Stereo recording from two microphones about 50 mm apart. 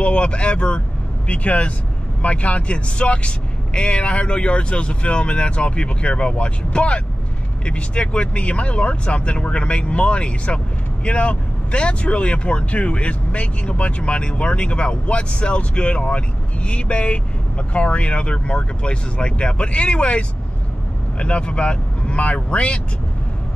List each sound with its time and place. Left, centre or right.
0.0 s speech: left